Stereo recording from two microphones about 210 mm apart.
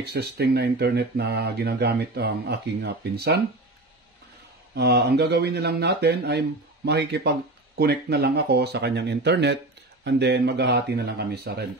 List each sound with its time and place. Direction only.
0.0 s speech: 50° right (ahead or behind)
4.7 s speech: 50° right (ahead or behind)